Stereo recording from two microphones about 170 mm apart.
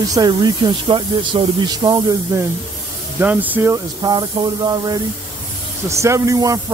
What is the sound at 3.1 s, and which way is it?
Speech, 10° right (ahead or behind).